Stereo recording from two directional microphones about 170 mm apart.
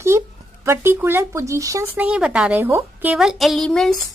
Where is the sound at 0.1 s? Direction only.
15° right (ahead or behind).